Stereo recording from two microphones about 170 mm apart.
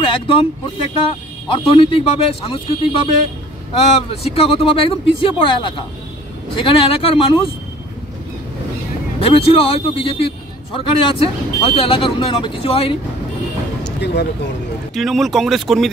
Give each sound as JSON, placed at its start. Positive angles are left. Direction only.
{"t": 0.0, "sound": "speech", "side_deg": 30}
{"t": 1.5, "sound": "speech", "side_deg": 30}
{"t": 9.2, "sound": "speech", "side_deg": 35}
{"t": 15.0, "sound": "speech", "side_deg": 0}